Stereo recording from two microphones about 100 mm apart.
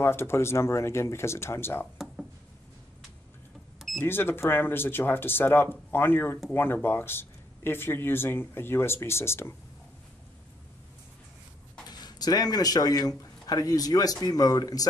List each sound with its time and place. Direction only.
0.0 s speech: 25° left (ahead or behind)
4.0 s speech: 20° left (ahead or behind)
11.9 s speech: 45° left (ahead or behind)